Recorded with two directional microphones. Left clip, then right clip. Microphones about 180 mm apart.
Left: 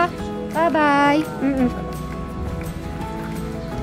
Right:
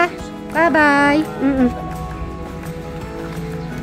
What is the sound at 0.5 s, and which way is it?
Speech, 20° right (ahead or behind).